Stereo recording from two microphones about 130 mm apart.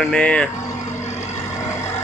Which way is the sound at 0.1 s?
5° left (ahead or behind).